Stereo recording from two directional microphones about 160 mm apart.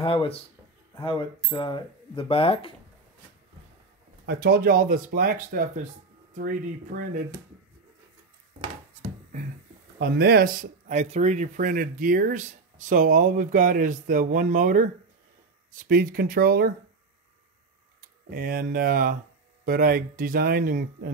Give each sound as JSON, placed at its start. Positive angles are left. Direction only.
{"t": 0.0, "sound": "speech", "side_deg": 35}
{"t": 4.3, "sound": "speech", "side_deg": -75}
{"t": 9.9, "sound": "speech", "side_deg": -85}
{"t": 10.6, "sound": "speech", "side_deg": -45}
{"t": 18.3, "sound": "speech", "side_deg": -70}